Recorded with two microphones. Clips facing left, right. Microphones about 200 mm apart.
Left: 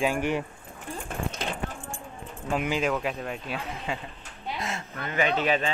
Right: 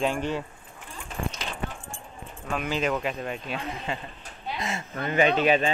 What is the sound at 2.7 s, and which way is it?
Speech, 5° left (ahead or behind).